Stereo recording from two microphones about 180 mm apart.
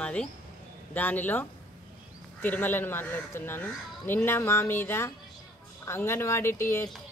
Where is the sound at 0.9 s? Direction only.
10° left (ahead or behind).